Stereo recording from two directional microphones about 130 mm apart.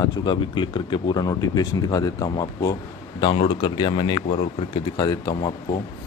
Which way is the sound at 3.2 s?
40° left (ahead or behind).